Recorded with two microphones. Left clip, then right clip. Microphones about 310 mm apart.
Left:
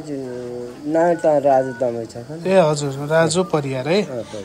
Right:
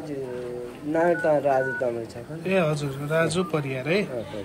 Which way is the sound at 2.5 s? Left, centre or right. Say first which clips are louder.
Left 9 dB; centre.